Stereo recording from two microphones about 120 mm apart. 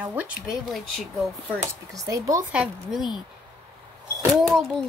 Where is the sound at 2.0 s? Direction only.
30° right (ahead or behind).